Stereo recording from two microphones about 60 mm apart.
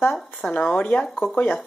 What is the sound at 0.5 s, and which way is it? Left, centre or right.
Speech, left.